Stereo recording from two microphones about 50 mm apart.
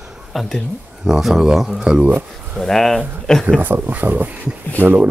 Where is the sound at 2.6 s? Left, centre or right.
Centre.